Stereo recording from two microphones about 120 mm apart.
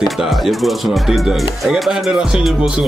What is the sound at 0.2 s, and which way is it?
Speech, centre (ahead or behind).